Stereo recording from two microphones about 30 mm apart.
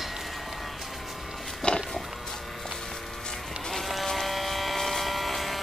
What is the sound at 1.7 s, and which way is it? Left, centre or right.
Music, left.